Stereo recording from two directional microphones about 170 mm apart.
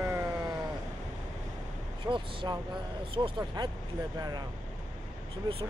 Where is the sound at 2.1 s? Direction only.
30° right (ahead or behind).